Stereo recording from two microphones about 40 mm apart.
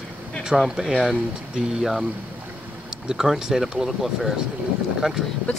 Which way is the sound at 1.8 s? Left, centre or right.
Centre.